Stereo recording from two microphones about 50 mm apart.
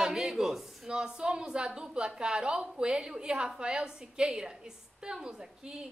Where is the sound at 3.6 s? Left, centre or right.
Centre.